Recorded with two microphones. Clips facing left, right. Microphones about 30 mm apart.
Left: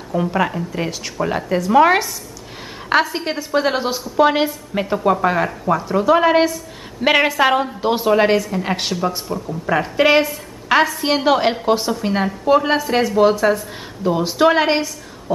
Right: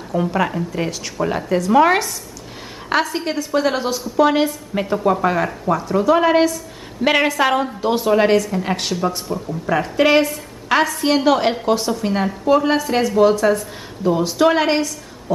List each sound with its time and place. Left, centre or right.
0.1 s a woman's voice: centre